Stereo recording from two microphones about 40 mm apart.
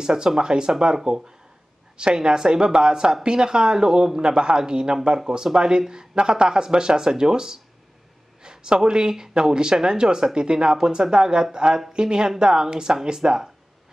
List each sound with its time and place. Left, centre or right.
0.0 s speech: right